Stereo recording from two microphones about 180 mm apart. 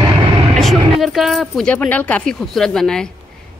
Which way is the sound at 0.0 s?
30° right (ahead or behind).